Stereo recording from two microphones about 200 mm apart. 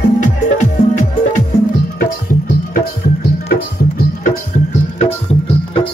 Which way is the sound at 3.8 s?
45° left (ahead or behind).